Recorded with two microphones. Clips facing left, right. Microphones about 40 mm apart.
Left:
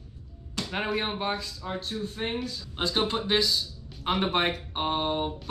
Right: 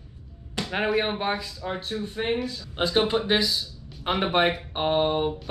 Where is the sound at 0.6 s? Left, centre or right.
Centre.